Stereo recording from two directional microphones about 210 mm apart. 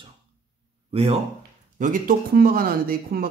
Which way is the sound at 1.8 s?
40° right (ahead or behind).